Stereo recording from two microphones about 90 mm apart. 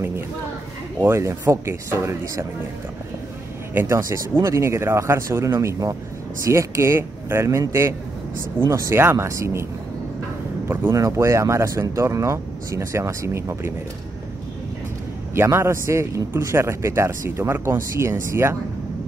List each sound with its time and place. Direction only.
1.0 s speech: 30° right (ahead or behind)
3.7 s speech: 30° right (ahead or behind)
10.7 s a man's voice: 25° right (ahead or behind)
11.0 s speech: 35° right (ahead or behind)
15.3 s a man's voice: 30° right (ahead or behind)